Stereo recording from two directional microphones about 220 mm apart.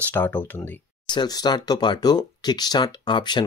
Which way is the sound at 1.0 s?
20° left (ahead or behind).